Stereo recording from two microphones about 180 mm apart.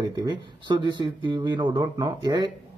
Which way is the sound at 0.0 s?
25° right (ahead or behind).